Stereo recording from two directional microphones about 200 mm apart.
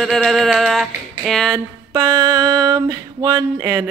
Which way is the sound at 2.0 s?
15° right (ahead or behind).